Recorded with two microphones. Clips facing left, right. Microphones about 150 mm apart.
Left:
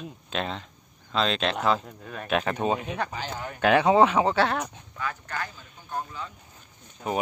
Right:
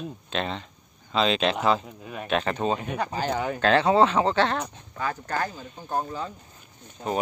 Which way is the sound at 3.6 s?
15° left (ahead or behind).